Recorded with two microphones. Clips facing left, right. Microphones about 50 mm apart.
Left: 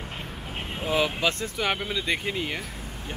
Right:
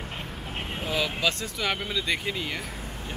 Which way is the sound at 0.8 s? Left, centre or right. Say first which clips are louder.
Left 3 dB; centre.